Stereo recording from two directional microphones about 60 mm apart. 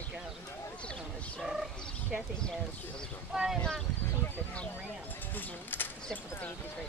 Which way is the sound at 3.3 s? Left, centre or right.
Centre.